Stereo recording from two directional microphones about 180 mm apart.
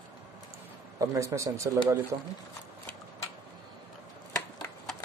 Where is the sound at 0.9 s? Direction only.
15° right (ahead or behind).